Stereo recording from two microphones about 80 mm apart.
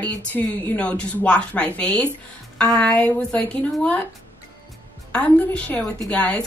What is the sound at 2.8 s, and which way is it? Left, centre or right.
Speech, centre.